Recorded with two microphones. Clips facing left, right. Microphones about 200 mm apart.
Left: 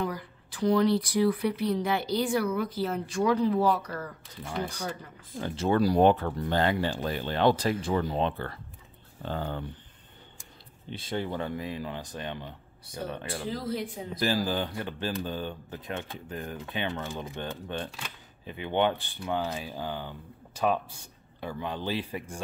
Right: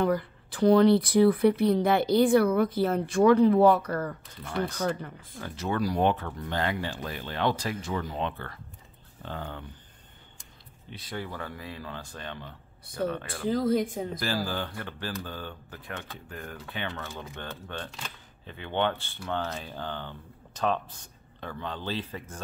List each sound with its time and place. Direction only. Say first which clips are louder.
0.0 s speech: right 7 dB; 60° right (ahead or behind)
5.4 s speech: left 5 dB; 30° left (ahead or behind)
10.9 s speech: left 5 dB; 25° left (ahead or behind)
13.5 s speech: right 9 dB; 50° right (ahead or behind)
14.2 s speech: left 6 dB; 20° left (ahead or behind)